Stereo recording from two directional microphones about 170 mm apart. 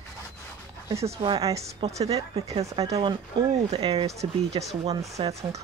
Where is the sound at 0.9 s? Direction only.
35° right (ahead or behind).